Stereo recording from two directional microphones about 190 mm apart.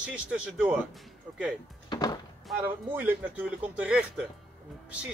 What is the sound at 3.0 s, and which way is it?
Speech, 10° right (ahead or behind).